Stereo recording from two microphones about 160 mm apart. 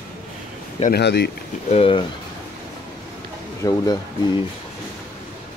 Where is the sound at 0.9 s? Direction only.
90° left.